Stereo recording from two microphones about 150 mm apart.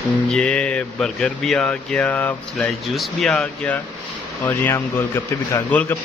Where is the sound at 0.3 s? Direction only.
10° left (ahead or behind).